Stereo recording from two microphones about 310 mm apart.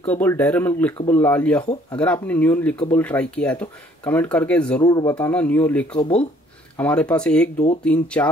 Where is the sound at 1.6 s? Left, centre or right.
Centre.